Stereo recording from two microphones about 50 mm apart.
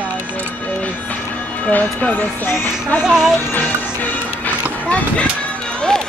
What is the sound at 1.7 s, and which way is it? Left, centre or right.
Music, left.